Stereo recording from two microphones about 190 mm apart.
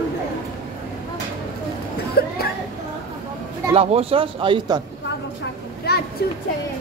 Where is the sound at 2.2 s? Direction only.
55° left (ahead or behind).